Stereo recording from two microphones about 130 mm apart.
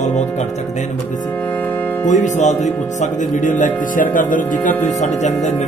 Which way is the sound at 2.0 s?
70° left (ahead or behind).